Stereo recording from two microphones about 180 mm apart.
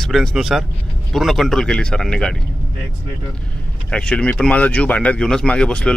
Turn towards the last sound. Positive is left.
turn(degrees=5)  # may be behind; listen again after turning